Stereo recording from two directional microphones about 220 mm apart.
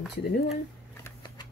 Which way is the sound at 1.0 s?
20° left (ahead or behind).